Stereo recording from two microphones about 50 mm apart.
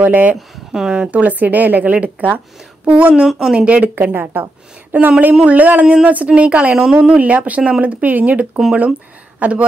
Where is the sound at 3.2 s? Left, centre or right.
Centre.